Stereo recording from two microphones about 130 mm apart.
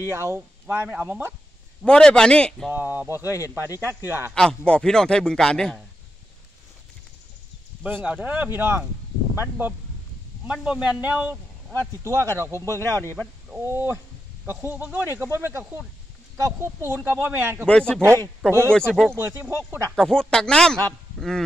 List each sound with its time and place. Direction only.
0.1 s speech: 20° right (ahead or behind)
1.9 s a man's voice: 5° left (ahead or behind)
2.7 s speech: 15° right (ahead or behind)
3.3 s speech: 25° left (ahead or behind)
4.3 s a man's voice: 5° left (ahead or behind)
7.8 s a man's voice: 10° right (ahead or behind)
17.6 s speech: 5° left (ahead or behind)
19.1 s speech: 20° right (ahead or behind)
20.0 s a man's voice: 5° left (ahead or behind)